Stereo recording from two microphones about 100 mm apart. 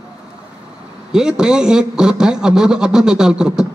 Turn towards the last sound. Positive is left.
turn(degrees=-5)  # may be behind; listen again after turning